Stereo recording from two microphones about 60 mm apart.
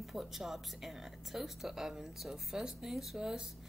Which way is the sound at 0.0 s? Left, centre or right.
Centre.